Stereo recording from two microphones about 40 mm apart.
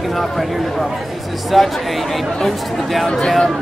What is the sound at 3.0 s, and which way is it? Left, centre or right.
Speech, centre.